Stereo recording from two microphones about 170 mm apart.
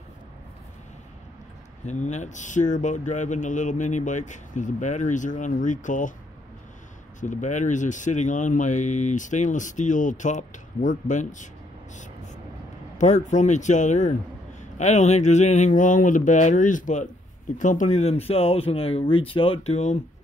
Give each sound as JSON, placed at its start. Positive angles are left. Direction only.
{"t": 1.9, "sound": "speech", "side_deg": 45}
{"t": 7.2, "sound": "speech", "side_deg": 45}
{"t": 12.9, "sound": "speech", "side_deg": 45}